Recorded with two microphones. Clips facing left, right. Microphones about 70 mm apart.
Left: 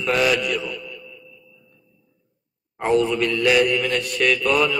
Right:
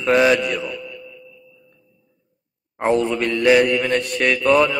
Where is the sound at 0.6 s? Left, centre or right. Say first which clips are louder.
Right 2 dB; centre.